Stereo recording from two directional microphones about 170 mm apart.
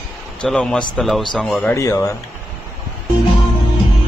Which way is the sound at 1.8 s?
20° left (ahead or behind).